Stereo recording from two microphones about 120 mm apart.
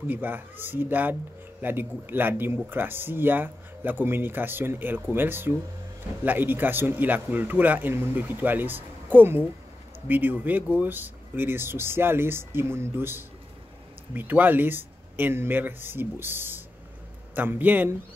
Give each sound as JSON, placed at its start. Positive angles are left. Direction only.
{"t": 0.0, "sound": "speech", "side_deg": -15}